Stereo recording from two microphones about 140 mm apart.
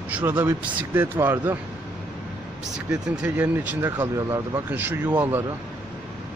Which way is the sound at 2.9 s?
10° right (ahead or behind).